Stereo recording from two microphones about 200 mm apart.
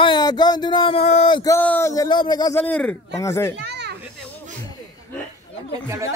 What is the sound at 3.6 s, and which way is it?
Children playing, 55° right (ahead or behind).